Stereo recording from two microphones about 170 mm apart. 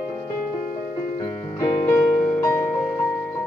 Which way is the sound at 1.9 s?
10° left (ahead or behind).